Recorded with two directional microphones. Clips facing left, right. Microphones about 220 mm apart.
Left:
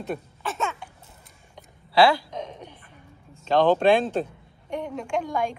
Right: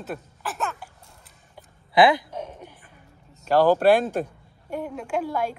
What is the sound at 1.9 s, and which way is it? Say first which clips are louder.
Speech: right 1 dB; 20° right (ahead or behind).